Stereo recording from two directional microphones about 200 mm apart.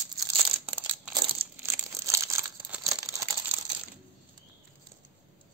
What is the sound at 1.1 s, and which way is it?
Crumpling, 25° right (ahead or behind).